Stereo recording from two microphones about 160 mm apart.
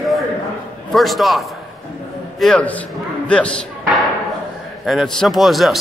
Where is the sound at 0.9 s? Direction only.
Centre (ahead or behind).